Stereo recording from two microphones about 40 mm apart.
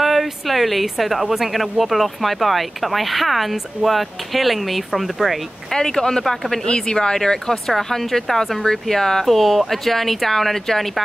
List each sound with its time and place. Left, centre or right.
0.0 s speech: centre
5.7 s a woman's voice: centre